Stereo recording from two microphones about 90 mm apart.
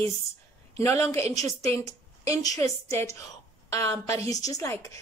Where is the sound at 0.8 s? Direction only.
35° left (ahead or behind).